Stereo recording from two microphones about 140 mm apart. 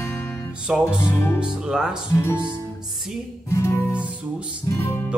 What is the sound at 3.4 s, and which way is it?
Guitar, 20° left (ahead or behind).